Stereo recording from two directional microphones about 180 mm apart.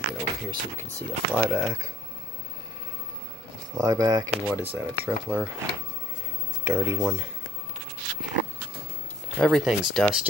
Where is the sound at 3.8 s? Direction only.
20° right (ahead or behind).